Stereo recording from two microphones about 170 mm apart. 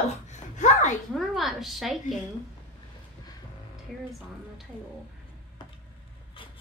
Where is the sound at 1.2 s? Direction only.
Centre (ahead or behind).